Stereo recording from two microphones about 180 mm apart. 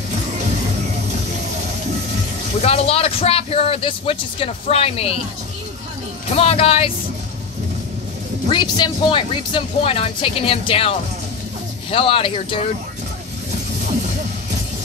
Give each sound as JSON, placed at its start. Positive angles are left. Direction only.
{"t": 0.4, "sound": "music", "side_deg": -40}
{"t": 2.6, "sound": "speech", "side_deg": 35}
{"t": 6.3, "sound": "speech", "side_deg": 35}
{"t": 8.5, "sound": "speech", "side_deg": 25}